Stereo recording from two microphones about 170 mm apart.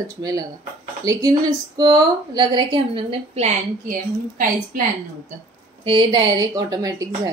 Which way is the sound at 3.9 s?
50° right (ahead or behind).